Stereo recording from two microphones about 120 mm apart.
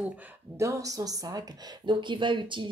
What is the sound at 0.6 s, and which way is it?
Speech, 25° right (ahead or behind).